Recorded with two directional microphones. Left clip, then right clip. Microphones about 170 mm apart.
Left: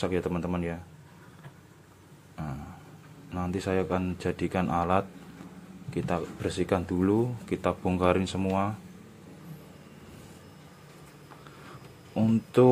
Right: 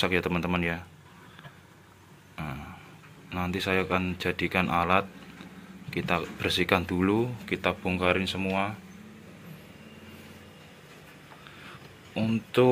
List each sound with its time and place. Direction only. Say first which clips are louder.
0.0 s speech: right 3 dB; 10° left (ahead or behind)
2.3 s a sound: right 2 dB; 10° left (ahead or behind)
3.3 s speech: right 2 dB; 15° left (ahead or behind)
12.1 s speech: left 2 dB; 25° left (ahead or behind)